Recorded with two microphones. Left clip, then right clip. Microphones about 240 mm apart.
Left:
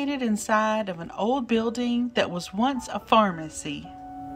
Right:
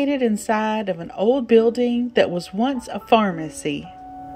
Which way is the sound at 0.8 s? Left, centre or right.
Left.